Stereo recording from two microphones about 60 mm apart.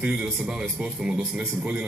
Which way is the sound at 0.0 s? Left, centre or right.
Centre.